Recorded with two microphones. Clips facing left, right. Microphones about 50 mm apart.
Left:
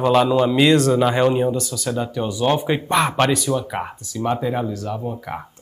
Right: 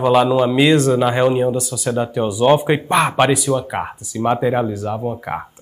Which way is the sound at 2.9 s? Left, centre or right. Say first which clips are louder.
Right 2 dB; centre.